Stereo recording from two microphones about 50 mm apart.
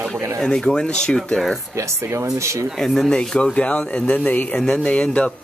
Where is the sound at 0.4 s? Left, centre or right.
Centre.